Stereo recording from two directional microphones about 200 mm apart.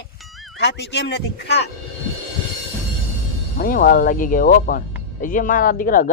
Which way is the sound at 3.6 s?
45° left (ahead or behind).